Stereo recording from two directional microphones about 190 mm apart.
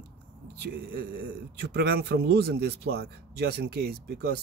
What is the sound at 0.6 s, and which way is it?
Speech, 55° right (ahead or behind).